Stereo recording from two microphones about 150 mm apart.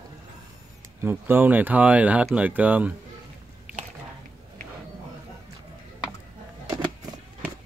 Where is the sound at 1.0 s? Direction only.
15° right (ahead or behind).